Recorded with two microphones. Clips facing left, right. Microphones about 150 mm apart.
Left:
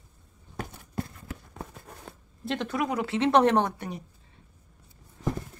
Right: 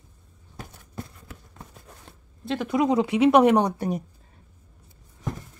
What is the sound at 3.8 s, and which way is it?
Speech, 45° right (ahead or behind).